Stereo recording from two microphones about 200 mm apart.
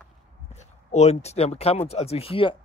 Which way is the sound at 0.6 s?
35° left (ahead or behind).